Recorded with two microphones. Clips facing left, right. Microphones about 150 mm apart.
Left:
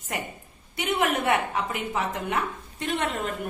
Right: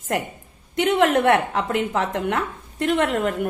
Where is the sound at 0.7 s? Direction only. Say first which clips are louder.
Right 8 dB; 90° right.